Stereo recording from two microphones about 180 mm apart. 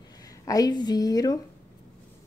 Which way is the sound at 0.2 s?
20° left (ahead or behind).